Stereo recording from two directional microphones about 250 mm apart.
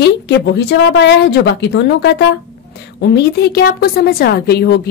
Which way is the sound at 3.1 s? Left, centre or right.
Left.